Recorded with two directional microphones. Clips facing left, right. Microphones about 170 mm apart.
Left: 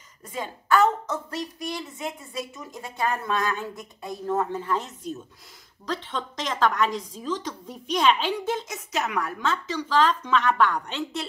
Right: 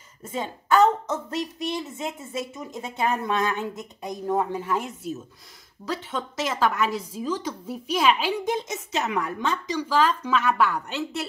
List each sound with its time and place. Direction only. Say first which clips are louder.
0.2 s a woman's voice: right 3 dB; 25° right (ahead or behind); by 11.2 s 5° right (ahead or behind)